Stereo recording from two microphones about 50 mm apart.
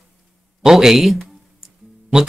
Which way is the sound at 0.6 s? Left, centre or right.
Centre.